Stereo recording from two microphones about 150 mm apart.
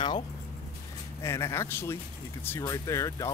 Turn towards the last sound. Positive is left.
turn(degrees=20)  # may be behind; listen again after turning